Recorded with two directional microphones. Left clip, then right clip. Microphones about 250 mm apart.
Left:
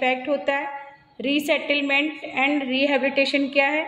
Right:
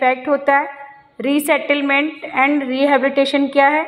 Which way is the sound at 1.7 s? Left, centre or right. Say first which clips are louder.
Right 5 dB; centre.